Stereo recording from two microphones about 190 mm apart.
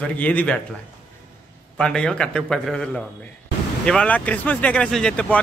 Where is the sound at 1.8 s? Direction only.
5° left (ahead or behind).